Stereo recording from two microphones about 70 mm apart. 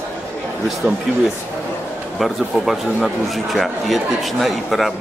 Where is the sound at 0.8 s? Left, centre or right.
Centre.